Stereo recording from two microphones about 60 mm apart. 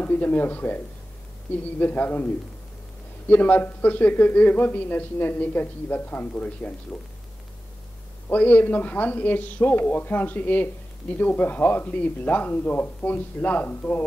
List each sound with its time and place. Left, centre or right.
0.0 s speech: left
8.3 s speech: left